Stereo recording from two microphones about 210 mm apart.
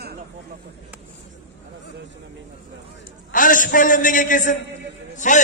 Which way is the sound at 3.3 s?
40° left (ahead or behind).